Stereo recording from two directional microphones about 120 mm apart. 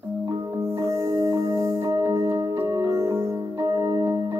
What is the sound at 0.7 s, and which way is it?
Music, 20° right (ahead or behind).